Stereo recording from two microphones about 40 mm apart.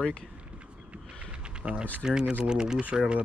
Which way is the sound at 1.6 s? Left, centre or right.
Right.